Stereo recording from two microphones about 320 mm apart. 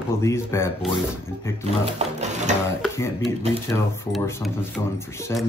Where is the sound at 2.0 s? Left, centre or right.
Right.